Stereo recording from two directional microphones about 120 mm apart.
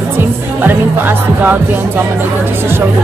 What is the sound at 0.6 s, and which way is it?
Speech, 15° right (ahead or behind).